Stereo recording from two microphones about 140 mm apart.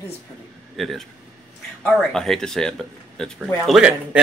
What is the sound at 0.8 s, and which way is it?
Speech, centre (ahead or behind).